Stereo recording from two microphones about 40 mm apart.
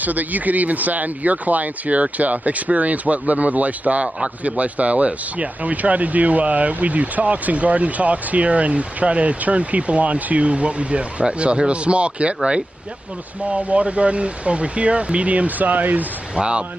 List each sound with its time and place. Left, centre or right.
0.0 s speech: right
13.5 s speech: right
16.3 s speech: right